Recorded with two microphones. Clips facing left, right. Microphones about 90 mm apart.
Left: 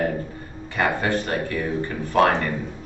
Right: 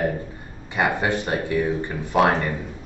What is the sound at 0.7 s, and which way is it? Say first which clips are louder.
A man's voice: even; 15° right (ahead or behind).